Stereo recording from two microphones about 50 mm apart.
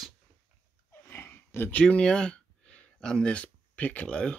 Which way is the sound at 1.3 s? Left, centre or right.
Left.